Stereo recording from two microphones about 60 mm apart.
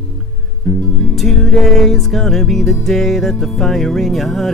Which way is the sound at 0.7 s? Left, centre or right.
Centre.